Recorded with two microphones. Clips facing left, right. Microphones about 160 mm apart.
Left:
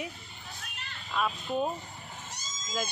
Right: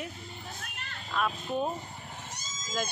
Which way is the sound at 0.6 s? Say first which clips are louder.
Right 2 dB; 55° right (ahead or behind).